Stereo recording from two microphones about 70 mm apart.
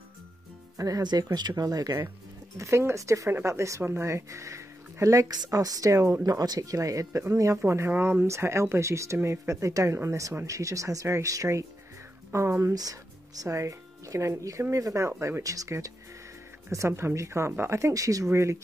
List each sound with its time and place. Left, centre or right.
0.7 s speech: right
1.0 s speech: right
1.6 s speech: right
2.5 s speech: right
5.5 s speech: right
6.2 s speech: right
18.3 s speech: right